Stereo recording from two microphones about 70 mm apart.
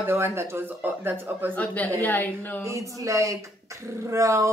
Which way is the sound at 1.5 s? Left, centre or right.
Left.